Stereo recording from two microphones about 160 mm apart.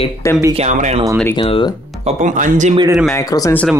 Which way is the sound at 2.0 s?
50° right (ahead or behind).